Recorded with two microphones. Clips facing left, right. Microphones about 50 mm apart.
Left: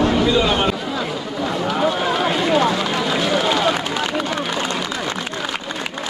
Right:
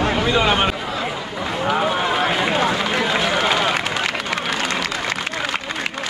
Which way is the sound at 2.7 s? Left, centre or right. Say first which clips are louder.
Even; right.